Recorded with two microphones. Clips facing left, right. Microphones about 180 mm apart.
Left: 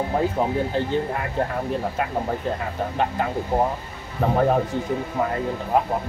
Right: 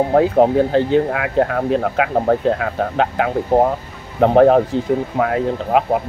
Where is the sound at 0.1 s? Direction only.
80° right.